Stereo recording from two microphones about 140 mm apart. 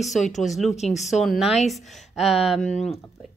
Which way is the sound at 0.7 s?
55° left (ahead or behind).